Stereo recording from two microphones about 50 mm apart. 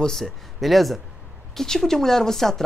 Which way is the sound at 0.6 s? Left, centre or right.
Centre.